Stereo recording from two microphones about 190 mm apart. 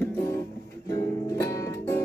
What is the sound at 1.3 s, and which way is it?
Music, 15° left (ahead or behind).